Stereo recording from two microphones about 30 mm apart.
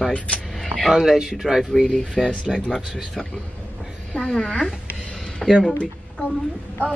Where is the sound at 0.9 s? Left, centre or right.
Centre.